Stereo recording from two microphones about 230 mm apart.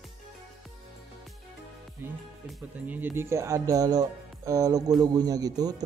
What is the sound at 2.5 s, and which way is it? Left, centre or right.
Speech, centre.